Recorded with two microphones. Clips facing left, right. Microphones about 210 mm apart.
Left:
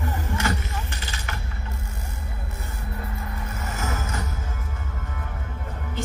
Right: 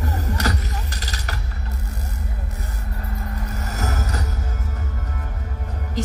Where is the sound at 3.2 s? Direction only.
40° right (ahead or behind).